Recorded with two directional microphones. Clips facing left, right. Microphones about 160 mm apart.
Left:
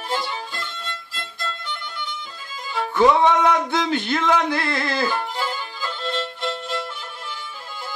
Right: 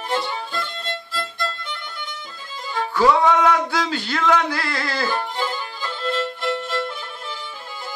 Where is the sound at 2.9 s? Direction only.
20° left (ahead or behind).